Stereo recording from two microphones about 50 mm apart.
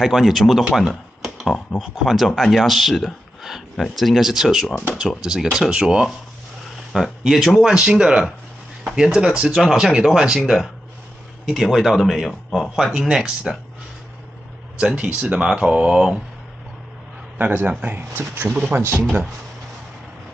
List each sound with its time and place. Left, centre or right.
0.0 s speech: centre
0.7 s a sound: centre
1.8 s speech: centre
6.9 s speech: centre
7.5 s speech: centre
12.7 s speech: centre
14.8 s speech: right
17.5 s a man's voice: right
18.8 s speech: right